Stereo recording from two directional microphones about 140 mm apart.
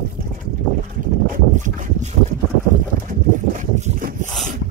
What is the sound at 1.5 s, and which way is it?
Boat, 60° right (ahead or behind).